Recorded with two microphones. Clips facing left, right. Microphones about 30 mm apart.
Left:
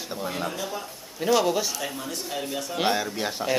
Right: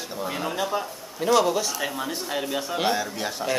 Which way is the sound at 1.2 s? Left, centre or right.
Centre.